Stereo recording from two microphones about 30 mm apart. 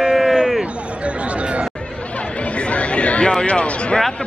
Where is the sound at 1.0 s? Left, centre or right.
Right.